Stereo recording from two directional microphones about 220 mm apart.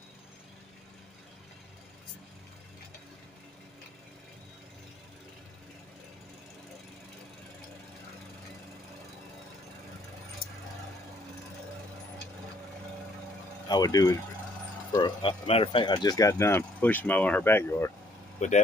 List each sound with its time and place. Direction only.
13.7 s speech: 15° left (ahead or behind)
18.4 s speech: 35° left (ahead or behind)